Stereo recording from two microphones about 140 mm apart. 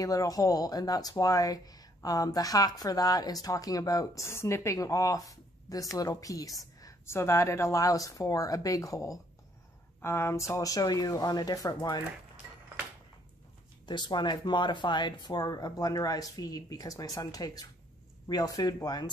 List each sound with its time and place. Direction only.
0.0 s speech: 25° left (ahead or behind)
13.8 s speech: 30° left (ahead or behind)